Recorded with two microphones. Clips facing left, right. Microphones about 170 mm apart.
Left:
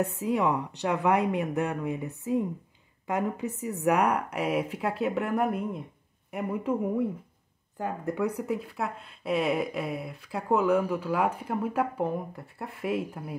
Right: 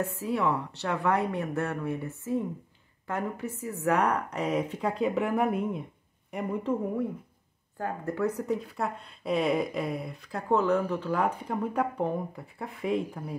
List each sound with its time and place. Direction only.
0.0 s a woman's voice: 20° left (ahead or behind)
7.7 s speech: 15° left (ahead or behind)